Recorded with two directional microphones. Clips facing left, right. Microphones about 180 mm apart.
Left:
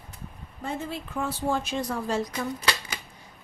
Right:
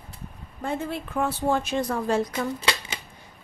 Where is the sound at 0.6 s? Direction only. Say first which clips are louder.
Right 4 dB; 60° right (ahead or behind).